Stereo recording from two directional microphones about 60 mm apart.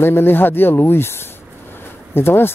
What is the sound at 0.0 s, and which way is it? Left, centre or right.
A woman's voice, left.